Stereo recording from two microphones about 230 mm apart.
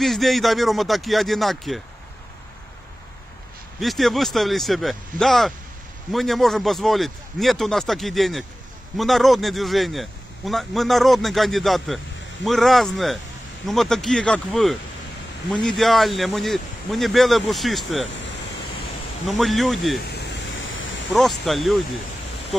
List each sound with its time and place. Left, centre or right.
0.0 s a man's voice: centre
3.8 s a man's voice: centre
18.0 s speech: left
19.2 s a man's voice: centre
20.0 s a sound: left
21.1 s a man's voice: centre